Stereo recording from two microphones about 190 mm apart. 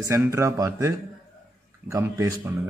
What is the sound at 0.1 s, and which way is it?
Speech, 15° right (ahead or behind).